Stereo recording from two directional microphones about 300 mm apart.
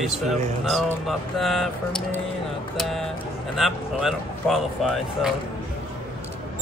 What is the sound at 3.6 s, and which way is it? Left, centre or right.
Speech, centre.